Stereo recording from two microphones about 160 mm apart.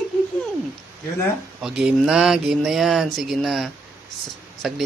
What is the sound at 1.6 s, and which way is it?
Speech, 5° right (ahead or behind).